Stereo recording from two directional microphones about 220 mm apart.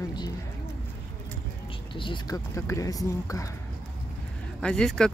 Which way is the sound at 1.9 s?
20° left (ahead or behind).